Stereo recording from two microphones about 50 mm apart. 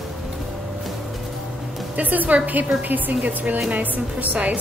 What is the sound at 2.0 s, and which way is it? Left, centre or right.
A woman's voice, right.